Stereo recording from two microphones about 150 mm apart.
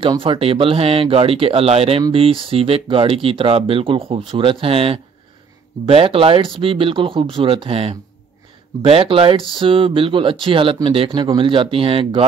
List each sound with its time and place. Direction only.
0.0 s speech: 35° right (ahead or behind)